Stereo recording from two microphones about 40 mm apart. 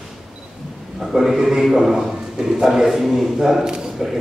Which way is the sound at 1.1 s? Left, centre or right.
Centre.